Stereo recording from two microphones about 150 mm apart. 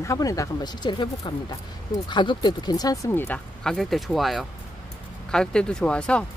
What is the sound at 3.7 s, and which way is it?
Speech, centre (ahead or behind).